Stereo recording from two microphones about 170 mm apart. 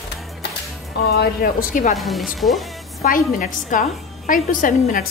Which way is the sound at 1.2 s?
55° left (ahead or behind).